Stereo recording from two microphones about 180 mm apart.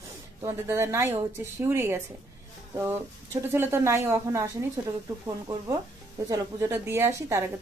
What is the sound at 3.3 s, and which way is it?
A woman's voice, 15° right (ahead or behind).